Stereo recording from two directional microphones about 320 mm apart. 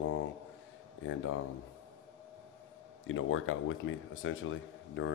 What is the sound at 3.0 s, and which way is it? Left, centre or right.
A man's voice, left.